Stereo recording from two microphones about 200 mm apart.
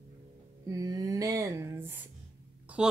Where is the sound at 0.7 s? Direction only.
15° right (ahead or behind).